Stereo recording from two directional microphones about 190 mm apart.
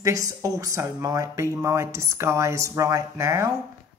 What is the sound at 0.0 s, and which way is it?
A woman's voice, 15° right (ahead or behind).